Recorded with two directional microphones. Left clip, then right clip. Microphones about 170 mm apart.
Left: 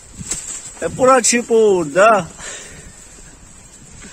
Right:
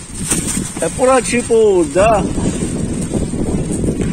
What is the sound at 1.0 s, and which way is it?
Speech, 50° left (ahead or behind).